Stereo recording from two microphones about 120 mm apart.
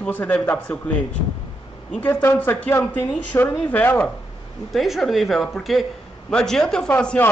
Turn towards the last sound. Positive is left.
turn(degrees=15)  # may be behind; listen again after turning